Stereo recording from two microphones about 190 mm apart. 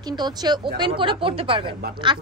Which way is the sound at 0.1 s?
20° right (ahead or behind).